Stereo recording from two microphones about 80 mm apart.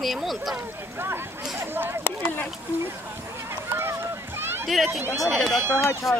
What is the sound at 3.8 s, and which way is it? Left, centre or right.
Rowboat, right.